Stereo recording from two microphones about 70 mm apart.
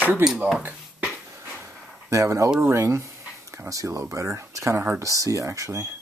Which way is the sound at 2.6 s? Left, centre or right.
Right.